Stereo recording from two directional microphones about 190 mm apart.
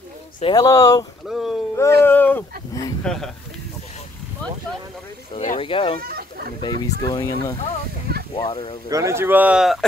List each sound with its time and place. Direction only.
0.4 s speech: 20° left (ahead or behind)
1.3 s a sound: centre (ahead or behind)
1.8 s a sound: 15° left (ahead or behind)
5.3 s speech: 35° left (ahead or behind)
6.0 s chicken: 55° right (ahead or behind)
6.6 s speech: 20° left (ahead or behind)
8.8 s speech: 15° right (ahead or behind)